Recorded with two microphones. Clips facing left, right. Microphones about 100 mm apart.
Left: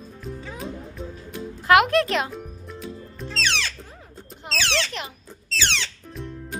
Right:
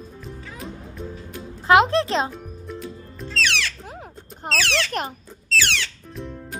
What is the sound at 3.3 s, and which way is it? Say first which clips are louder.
Music: right 2 dB; 30° left (ahead or behind).